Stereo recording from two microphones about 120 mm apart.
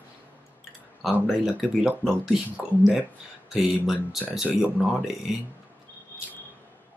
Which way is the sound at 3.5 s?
Centre (ahead or behind).